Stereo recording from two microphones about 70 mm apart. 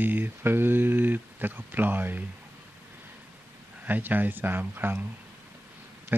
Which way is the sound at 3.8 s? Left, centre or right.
Right.